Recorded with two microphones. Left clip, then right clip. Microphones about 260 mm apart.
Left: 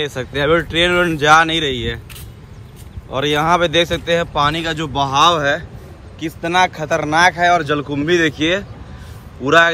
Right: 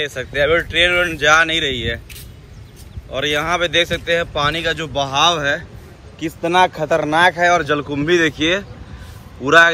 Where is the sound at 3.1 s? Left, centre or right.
Centre.